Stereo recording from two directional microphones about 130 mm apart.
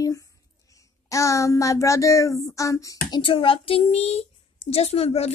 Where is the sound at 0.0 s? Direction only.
25° left (ahead or behind).